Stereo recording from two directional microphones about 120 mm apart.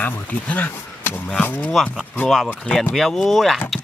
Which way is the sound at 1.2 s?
10° left (ahead or behind).